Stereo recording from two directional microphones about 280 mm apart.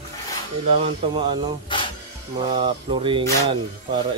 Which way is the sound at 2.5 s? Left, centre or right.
Centre.